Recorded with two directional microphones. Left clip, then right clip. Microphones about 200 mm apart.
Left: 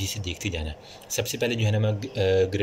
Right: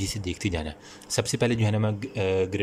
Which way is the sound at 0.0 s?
70° right (ahead or behind).